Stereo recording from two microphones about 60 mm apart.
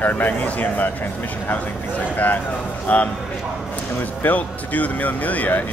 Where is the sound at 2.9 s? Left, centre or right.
Left.